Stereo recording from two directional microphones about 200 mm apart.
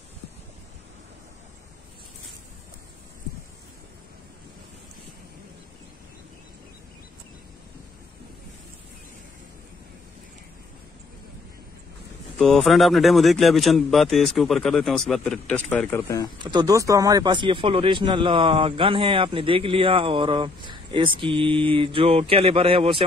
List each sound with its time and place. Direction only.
12.4 s speech: centre (ahead or behind)
16.4 s speech: 20° right (ahead or behind)